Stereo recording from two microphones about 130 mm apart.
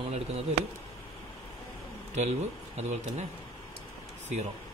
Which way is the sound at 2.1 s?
60° right (ahead or behind).